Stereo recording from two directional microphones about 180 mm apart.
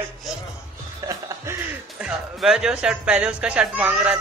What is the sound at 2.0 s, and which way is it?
A man's voice, 5° right (ahead or behind).